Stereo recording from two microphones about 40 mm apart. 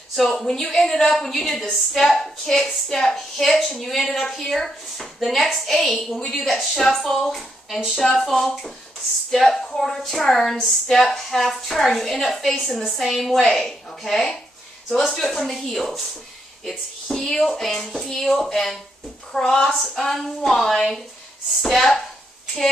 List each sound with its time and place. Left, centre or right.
0.1 s a woman's voice: centre
6.8 s a woman's voice: centre
13.6 s a woman's voice: centre
17.1 s a woman's voice: centre